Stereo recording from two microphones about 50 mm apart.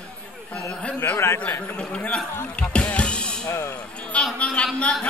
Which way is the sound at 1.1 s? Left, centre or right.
Left.